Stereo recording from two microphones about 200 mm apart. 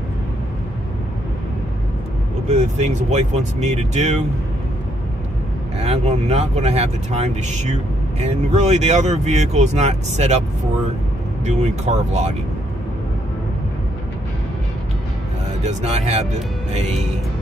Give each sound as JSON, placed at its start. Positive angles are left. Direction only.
{"t": 2.4, "sound": "speech", "side_deg": -35}
{"t": 5.8, "sound": "speech", "side_deg": -35}
{"t": 15.6, "sound": "speech", "side_deg": -30}